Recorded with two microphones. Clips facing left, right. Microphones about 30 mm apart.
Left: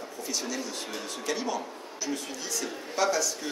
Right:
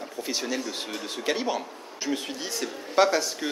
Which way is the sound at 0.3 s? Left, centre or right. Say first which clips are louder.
Right 3 dB; right.